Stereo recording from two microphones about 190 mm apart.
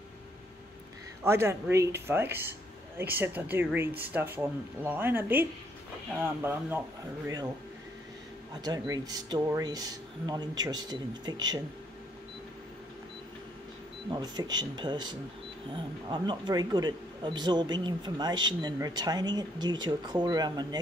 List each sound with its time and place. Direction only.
1.2 s speech: 15° right (ahead or behind)
8.5 s speech: 20° right (ahead or behind)
14.1 s speech: 20° right (ahead or behind)